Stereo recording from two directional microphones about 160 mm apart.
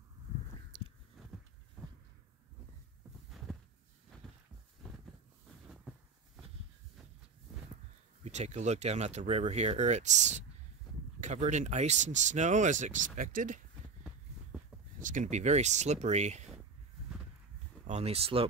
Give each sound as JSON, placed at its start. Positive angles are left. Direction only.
{"t": 3.3, "sound": "a sound", "side_deg": 0}
{"t": 8.2, "sound": "speech", "side_deg": -45}
{"t": 15.0, "sound": "speech", "side_deg": -55}
{"t": 17.8, "sound": "speech", "side_deg": -40}